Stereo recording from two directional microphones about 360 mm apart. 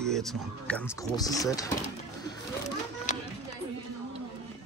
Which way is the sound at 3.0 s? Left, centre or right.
Centre.